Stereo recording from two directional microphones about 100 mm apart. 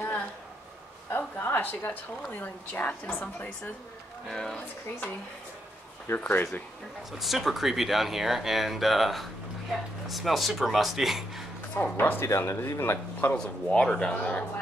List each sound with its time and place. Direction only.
1.1 s a sound: 20° left (ahead or behind)
2.3 s a woman's voice: 20° left (ahead or behind)
4.3 s speech: 5° left (ahead or behind)
6.0 s speech: 20° left (ahead or behind)
7.2 s speech: centre (ahead or behind)
11.7 s speech: 15° left (ahead or behind)
13.3 s a woman's voice: 10° left (ahead or behind)